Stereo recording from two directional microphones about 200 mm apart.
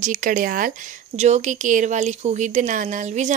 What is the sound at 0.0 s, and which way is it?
Speech, 40° right (ahead or behind).